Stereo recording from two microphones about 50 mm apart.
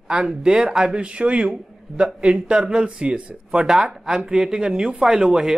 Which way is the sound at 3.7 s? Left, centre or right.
Centre.